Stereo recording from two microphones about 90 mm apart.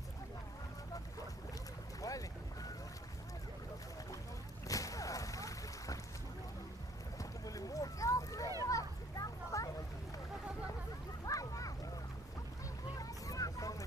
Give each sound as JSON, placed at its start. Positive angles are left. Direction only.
{"t": 2.0, "sound": "boat", "side_deg": 40}
{"t": 4.6, "sound": "boat", "side_deg": 40}
{"t": 7.2, "sound": "a sound", "side_deg": 40}
{"t": 8.6, "sound": "children playing", "side_deg": 40}
{"t": 11.2, "sound": "a sound", "side_deg": 40}
{"t": 12.9, "sound": "vehicle", "side_deg": 40}